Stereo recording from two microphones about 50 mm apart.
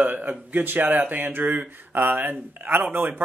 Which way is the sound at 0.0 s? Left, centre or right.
Right.